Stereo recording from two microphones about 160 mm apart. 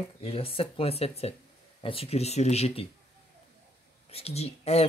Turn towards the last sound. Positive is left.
turn(degrees=40)  # may be behind; listen again after turning